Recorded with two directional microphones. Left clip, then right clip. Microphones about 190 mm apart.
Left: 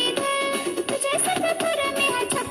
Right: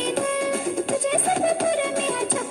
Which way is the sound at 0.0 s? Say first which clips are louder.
Left 1 dB; 30° right (ahead or behind).